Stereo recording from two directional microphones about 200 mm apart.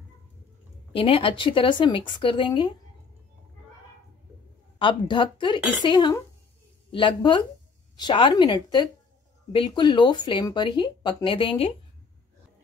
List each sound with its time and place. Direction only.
0.9 s speech: 25° left (ahead or behind)
4.7 s speech: 25° left (ahead or behind)